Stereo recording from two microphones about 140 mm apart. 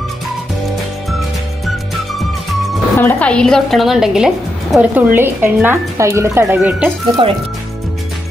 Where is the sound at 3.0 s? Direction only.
10° left (ahead or behind); by 6.9 s 10° right (ahead or behind).